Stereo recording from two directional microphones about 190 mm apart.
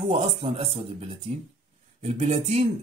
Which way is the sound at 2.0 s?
35° right (ahead or behind).